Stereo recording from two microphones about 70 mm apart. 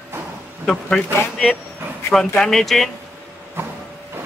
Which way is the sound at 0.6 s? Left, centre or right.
Centre.